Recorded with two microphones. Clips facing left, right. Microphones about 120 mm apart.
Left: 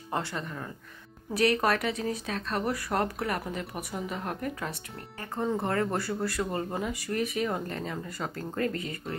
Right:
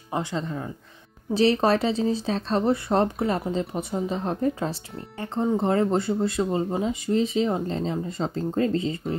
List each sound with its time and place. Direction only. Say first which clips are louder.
0.1 s speech: right 5 dB; 20° right (ahead or behind)